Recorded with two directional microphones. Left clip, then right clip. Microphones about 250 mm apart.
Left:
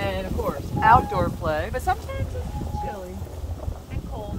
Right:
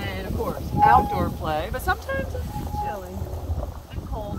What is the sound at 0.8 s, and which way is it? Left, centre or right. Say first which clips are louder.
Speech: even; centre.